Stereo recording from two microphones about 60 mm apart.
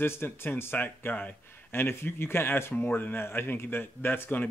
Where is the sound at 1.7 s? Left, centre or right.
Left.